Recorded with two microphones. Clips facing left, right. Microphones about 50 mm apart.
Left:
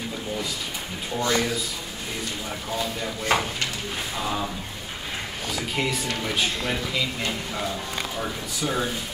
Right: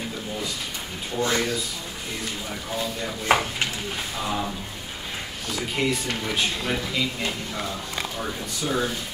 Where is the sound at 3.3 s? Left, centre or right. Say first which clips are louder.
Right 2 dB; centre.